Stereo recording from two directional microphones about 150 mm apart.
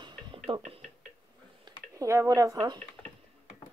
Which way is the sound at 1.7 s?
20° right (ahead or behind).